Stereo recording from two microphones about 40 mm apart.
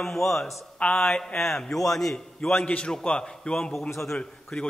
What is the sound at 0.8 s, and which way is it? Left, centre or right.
Speech, left.